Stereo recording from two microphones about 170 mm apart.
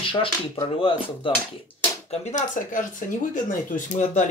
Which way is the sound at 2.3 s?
50° left (ahead or behind).